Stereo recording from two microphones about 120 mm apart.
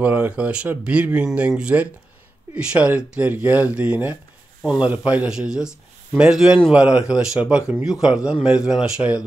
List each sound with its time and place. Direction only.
0.0 s speech: 15° right (ahead or behind)